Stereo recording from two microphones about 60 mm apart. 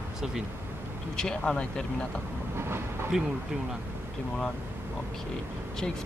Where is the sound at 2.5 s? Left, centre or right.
Right.